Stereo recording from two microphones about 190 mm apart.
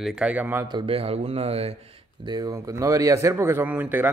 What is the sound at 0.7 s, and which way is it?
Speech, 30° right (ahead or behind).